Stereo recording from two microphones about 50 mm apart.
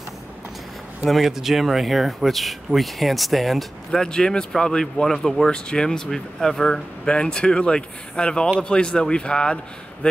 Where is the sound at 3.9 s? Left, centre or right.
Centre.